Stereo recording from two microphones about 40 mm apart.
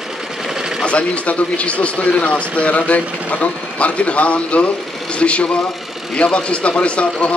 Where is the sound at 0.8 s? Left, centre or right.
Left.